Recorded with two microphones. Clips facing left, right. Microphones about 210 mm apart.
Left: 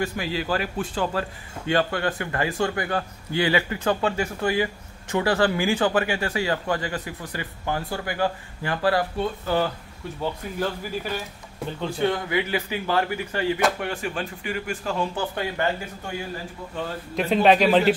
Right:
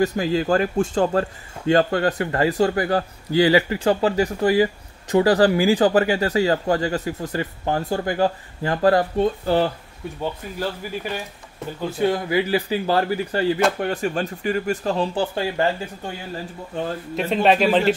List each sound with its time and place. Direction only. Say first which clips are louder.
0.0 s speech: right 7 dB; 40° right (ahead or behind)
12.0 s speech: right 4 dB; 30° right (ahead or behind)
17.1 s speech: left 1 dB; centre (ahead or behind)